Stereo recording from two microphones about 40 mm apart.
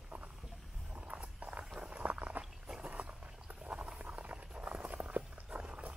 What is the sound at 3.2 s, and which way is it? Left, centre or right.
Clip-clop, right.